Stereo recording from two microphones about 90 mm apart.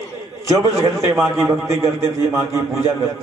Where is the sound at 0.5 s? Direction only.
40° right (ahead or behind).